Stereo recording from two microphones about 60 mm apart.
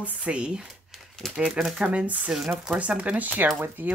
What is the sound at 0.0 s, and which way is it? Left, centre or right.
Speech, right.